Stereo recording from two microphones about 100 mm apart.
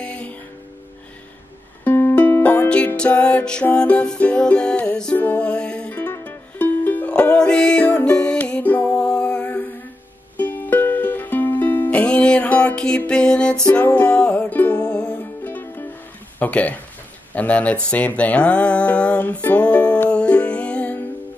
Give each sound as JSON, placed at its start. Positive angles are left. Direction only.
{"t": 0.0, "sound": "music", "side_deg": 10}
{"t": 1.9, "sound": "music", "side_deg": 20}
{"t": 14.8, "sound": "music", "side_deg": 40}
{"t": 15.4, "sound": "music", "side_deg": 20}
{"t": 16.3, "sound": "speech", "side_deg": 15}
{"t": 17.8, "sound": "music", "side_deg": 15}